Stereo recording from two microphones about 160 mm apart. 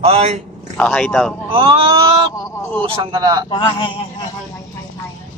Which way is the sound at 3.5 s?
30° left (ahead or behind).